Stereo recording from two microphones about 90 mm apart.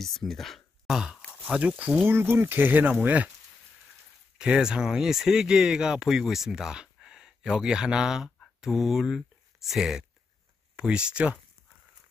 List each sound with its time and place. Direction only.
0.0 s speech: centre (ahead or behind)
1.5 s speech: 15° right (ahead or behind)
4.4 s speech: 10° right (ahead or behind)